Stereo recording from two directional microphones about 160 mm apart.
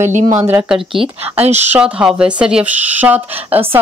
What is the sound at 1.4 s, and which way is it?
Speech, 45° right (ahead or behind).